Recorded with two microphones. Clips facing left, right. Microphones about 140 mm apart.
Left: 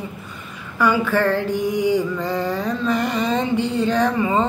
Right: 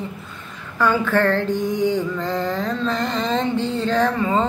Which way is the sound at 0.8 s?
10° left (ahead or behind).